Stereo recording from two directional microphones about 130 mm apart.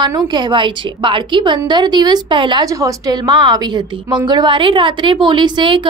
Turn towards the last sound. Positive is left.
turn(degrees=-40)  # may be behind; listen again after turning